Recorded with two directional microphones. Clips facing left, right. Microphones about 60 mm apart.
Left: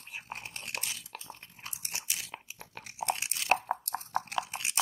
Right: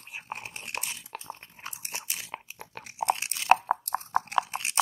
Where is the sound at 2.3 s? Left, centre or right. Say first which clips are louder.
Right 5 dB; right.